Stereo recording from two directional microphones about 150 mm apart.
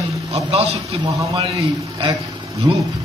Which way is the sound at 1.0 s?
20° right (ahead or behind).